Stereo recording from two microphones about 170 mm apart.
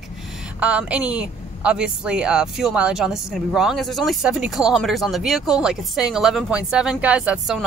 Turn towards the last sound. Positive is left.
turn(degrees=-5)  # may be behind; listen again after turning